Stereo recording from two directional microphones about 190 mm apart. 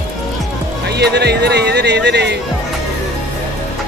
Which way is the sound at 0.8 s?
60° right (ahead or behind).